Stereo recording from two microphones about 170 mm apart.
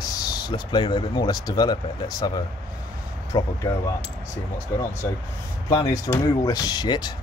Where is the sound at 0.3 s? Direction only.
25° left (ahead or behind).